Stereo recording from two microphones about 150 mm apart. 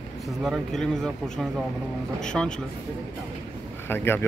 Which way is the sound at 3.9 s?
15° left (ahead or behind).